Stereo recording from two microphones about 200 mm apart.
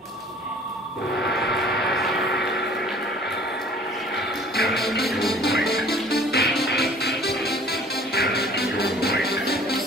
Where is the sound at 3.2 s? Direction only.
55° left (ahead or behind).